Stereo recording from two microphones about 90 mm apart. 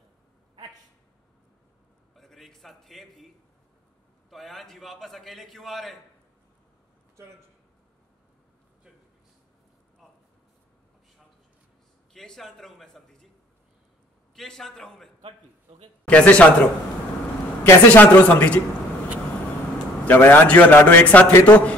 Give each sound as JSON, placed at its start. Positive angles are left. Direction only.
{"t": 2.1, "sound": "a sound", "side_deg": 0}
{"t": 4.3, "sound": "a man's voice", "side_deg": 0}
{"t": 7.2, "sound": "a man's voice", "side_deg": -30}
{"t": 12.1, "sound": "a man's voice", "side_deg": 5}
{"t": 14.3, "sound": "a man's voice", "side_deg": 5}
{"t": 16.1, "sound": "speech", "side_deg": 15}
{"t": 17.8, "sound": "speech", "side_deg": 20}
{"t": 20.1, "sound": "a man's voice", "side_deg": 20}